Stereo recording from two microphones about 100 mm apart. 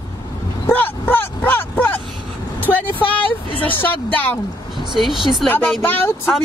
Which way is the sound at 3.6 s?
20° left (ahead or behind).